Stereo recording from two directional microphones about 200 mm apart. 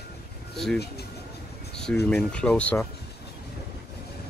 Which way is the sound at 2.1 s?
5° left (ahead or behind).